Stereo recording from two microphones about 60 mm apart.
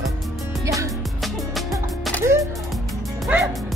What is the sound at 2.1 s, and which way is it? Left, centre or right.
Music, left.